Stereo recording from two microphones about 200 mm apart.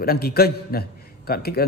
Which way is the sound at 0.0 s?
50° left (ahead or behind).